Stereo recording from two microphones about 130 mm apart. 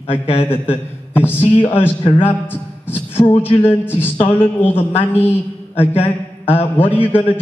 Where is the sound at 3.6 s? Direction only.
15° left (ahead or behind).